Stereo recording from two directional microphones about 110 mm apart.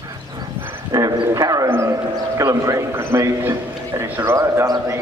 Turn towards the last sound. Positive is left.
turn(degrees=-30)  # may be behind; listen again after turning